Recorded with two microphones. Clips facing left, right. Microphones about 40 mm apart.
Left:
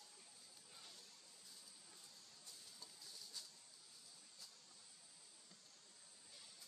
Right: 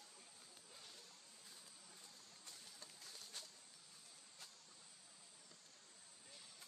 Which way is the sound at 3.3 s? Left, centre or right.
Right.